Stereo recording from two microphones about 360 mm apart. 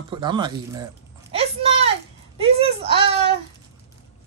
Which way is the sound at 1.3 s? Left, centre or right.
Centre.